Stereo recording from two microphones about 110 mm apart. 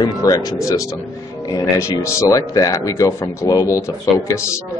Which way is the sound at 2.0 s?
25° left (ahead or behind).